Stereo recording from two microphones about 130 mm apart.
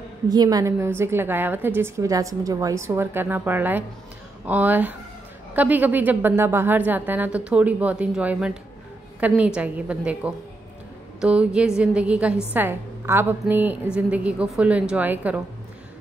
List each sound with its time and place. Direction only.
0.3 s a woman's voice: 30° right (ahead or behind); by 15.4 s 10° right (ahead or behind)